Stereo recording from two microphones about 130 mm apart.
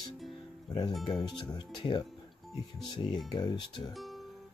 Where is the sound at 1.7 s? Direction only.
35° left (ahead or behind).